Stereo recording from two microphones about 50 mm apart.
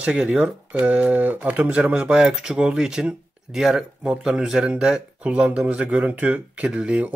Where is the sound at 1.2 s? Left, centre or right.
Right.